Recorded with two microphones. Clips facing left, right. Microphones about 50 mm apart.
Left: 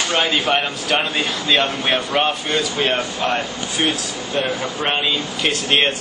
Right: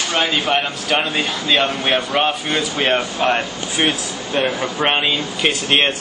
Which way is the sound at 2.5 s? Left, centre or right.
Right.